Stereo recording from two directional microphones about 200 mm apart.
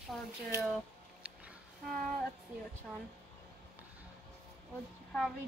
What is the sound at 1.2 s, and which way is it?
Music, 5° right (ahead or behind).